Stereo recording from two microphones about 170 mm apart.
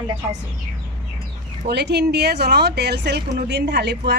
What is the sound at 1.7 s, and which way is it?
A woman's voice, 80° right.